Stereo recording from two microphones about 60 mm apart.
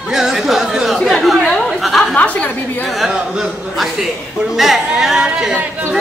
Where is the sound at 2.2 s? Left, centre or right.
Left.